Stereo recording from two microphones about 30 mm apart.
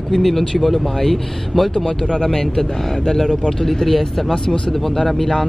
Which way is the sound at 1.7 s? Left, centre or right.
Left.